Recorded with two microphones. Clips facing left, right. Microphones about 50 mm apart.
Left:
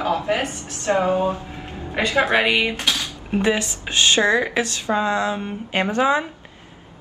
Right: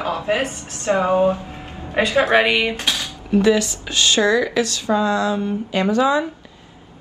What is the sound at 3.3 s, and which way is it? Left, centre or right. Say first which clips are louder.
Speech: right 5 dB; left.